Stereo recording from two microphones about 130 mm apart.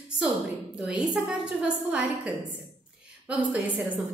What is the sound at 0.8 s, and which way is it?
A woman's voice, 5° right (ahead or behind).